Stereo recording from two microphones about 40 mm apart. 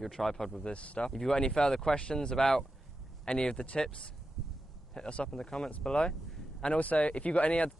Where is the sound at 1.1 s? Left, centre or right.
Centre.